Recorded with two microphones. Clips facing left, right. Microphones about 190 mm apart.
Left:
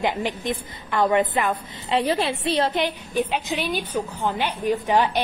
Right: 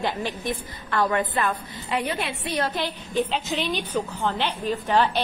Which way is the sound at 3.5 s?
10° left (ahead or behind).